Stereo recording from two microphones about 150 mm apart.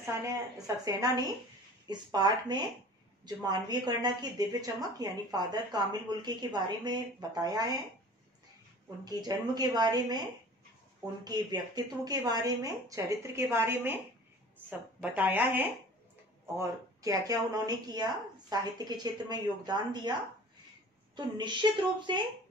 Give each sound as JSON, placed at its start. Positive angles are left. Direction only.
{"t": 0.0, "sound": "a woman's voice", "side_deg": -20}
{"t": 9.0, "sound": "a woman's voice", "side_deg": -25}
{"t": 11.2, "sound": "a woman's voice", "side_deg": -25}
{"t": 15.0, "sound": "speech", "side_deg": -10}
{"t": 16.5, "sound": "a woman's voice", "side_deg": -20}
{"t": 21.2, "sound": "a woman's voice", "side_deg": -30}